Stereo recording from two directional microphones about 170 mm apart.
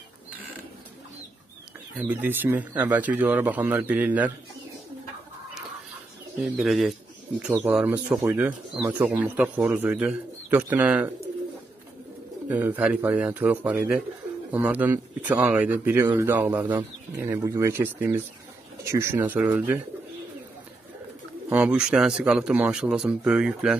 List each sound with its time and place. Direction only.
2.0 s speech: 10° right (ahead or behind)
6.5 s a man's voice: centre (ahead or behind)
12.4 s speech: 10° right (ahead or behind)
21.5 s a man's voice: 5° right (ahead or behind)